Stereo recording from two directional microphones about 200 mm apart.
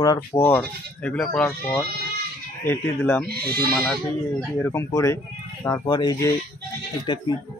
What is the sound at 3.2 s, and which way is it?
Speech, 50° right (ahead or behind).